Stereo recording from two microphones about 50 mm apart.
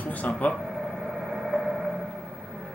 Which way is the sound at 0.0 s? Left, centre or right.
Left.